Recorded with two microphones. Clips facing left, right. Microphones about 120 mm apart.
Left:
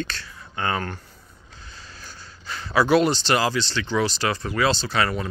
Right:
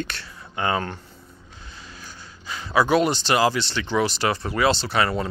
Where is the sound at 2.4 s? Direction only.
10° right (ahead or behind).